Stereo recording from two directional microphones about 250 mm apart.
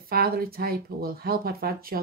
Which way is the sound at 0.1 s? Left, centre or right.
Right.